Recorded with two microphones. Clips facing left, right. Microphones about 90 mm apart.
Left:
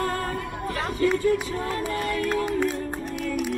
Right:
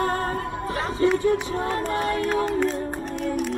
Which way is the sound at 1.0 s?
30° right (ahead or behind).